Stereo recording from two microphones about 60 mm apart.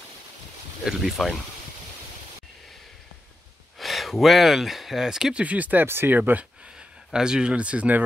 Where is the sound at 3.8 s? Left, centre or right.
Centre.